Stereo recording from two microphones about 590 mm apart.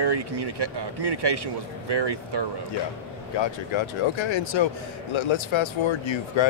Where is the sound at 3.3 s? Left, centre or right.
Left.